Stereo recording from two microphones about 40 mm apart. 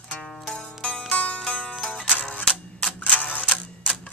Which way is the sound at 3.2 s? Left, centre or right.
Left.